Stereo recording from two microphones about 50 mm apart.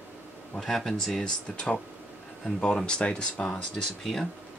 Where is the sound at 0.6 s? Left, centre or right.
Centre.